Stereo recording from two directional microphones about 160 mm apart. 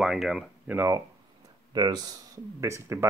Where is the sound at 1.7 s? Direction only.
25° right (ahead or behind).